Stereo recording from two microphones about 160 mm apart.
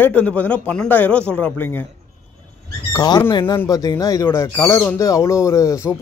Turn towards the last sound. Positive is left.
turn(degrees=20)  # may be behind; listen again after turning